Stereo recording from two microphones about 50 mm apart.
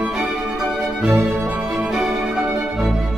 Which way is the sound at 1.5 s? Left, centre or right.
Right.